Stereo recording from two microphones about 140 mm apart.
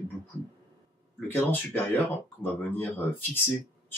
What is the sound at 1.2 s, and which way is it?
Speech, 15° left (ahead or behind).